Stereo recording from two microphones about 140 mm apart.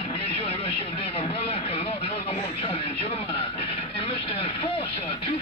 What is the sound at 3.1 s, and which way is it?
Vehicle, 45° left (ahead or behind).